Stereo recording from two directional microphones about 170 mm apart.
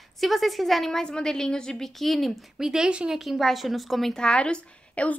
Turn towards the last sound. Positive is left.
turn(degrees=5)  # may be behind; listen again after turning